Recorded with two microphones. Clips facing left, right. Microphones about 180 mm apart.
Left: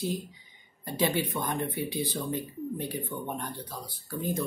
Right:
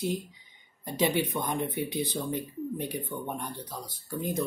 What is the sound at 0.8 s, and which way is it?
Speech, 15° right (ahead or behind).